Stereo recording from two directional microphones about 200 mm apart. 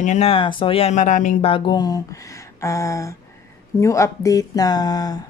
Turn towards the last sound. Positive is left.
turn(degrees=20)  # may be behind; listen again after turning